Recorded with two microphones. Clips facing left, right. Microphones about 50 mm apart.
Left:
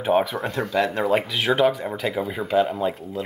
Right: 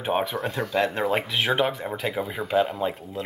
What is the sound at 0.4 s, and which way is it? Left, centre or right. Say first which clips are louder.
Speech: left 2 dB; centre.